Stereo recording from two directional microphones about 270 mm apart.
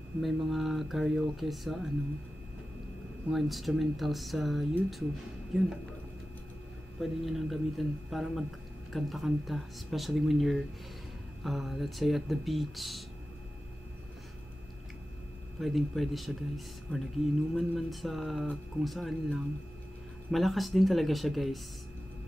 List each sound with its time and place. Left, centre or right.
0.2 s speech: centre
3.3 s speech: centre
7.0 s speech: centre
15.6 s speech: centre